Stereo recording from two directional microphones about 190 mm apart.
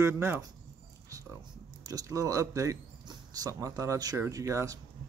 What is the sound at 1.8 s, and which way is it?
Speech, 20° right (ahead or behind).